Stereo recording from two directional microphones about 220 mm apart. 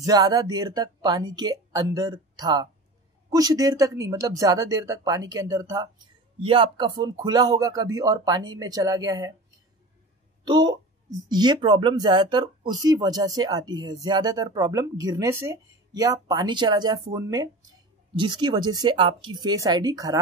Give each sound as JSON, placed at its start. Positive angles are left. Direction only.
{"t": 0.0, "sound": "speech", "side_deg": -15}
{"t": 10.4, "sound": "speech", "side_deg": -20}